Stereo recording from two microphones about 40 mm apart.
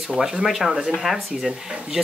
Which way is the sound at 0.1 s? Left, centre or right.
Centre.